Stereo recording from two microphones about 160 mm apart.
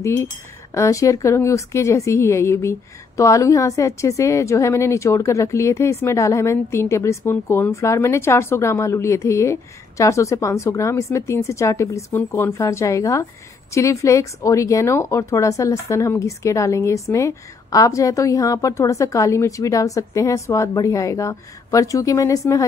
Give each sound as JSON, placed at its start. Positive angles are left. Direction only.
{"t": 0.0, "sound": "a woman's voice", "side_deg": 15}